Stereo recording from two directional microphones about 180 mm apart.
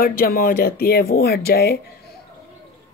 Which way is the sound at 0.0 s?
55° left (ahead or behind).